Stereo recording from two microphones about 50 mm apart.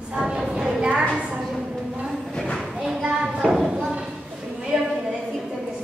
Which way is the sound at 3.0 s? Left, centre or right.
Centre.